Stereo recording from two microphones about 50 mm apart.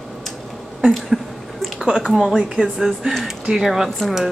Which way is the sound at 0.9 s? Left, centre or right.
Centre.